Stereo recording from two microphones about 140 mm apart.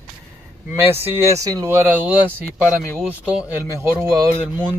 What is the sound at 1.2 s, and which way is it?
Speech, 25° right (ahead or behind).